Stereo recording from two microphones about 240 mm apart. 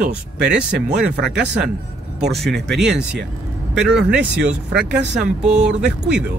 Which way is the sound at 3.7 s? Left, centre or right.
Centre.